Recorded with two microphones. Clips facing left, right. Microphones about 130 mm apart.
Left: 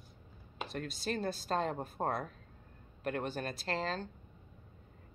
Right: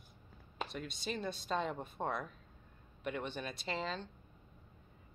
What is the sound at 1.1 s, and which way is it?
Speech, 50° left (ahead or behind).